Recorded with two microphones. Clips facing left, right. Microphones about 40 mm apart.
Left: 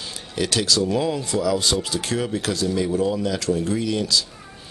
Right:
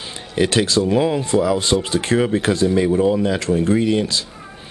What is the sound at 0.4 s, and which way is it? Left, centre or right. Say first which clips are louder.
Speech: right 5 dB; right.